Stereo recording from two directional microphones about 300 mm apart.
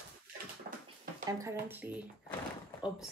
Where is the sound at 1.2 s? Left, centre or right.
Centre.